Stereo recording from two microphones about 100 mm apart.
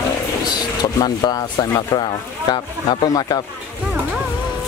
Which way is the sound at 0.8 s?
40° left (ahead or behind).